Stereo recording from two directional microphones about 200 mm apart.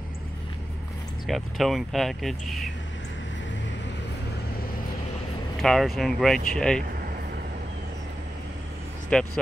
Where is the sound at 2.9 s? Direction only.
65° left (ahead or behind).